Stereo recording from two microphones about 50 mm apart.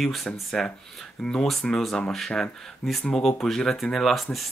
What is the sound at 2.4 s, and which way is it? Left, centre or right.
Speech, centre.